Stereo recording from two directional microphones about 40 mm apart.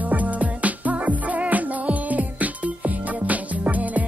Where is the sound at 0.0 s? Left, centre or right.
Right.